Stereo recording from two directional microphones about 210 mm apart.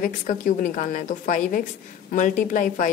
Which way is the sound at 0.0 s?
40° left (ahead or behind).